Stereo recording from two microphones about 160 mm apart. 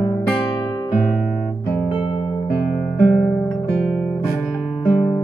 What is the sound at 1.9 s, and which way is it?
Music, 30° left (ahead or behind).